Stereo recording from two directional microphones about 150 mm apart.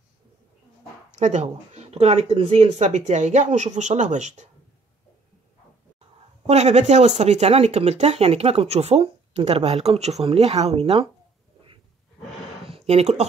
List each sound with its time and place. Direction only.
1.1 s speech: 50° right (ahead or behind)
6.4 s speech: 45° right (ahead or behind)
12.6 s a sound: 40° right (ahead or behind)